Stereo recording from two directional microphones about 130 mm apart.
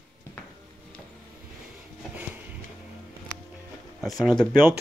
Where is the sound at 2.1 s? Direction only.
10° right (ahead or behind).